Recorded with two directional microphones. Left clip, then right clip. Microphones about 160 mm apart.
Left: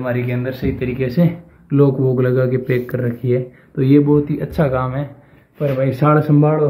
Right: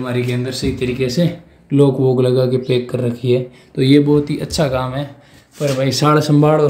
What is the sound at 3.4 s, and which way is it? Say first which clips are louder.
Speech: right 2 dB; 25° right (ahead or behind).